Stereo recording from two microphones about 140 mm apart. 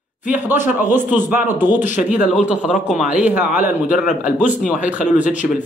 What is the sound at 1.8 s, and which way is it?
Speech, 65° left (ahead or behind).